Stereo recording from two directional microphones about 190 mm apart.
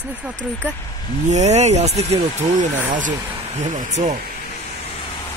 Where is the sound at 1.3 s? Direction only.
35° right (ahead or behind).